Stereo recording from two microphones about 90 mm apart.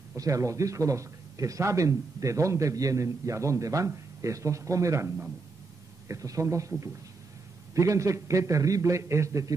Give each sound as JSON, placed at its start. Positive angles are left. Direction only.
{"t": 0.1, "sound": "speech", "side_deg": -35}
{"t": 7.7, "sound": "speech", "side_deg": -35}